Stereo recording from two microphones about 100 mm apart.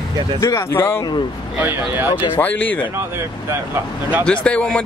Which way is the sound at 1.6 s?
20° right (ahead or behind).